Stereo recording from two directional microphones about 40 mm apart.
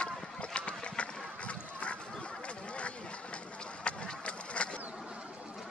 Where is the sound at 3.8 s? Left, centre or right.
Left.